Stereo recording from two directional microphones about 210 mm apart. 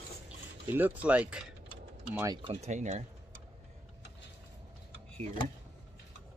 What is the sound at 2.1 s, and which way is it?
Speech, 15° right (ahead or behind).